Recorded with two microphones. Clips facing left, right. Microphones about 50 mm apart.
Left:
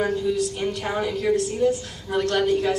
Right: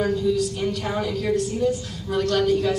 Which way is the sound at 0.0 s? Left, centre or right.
Centre.